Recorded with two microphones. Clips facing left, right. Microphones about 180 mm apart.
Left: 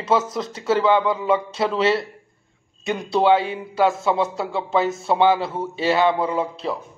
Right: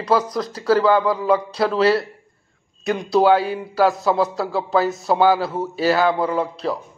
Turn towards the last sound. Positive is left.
turn(degrees=0)  # may be behind; listen again after turning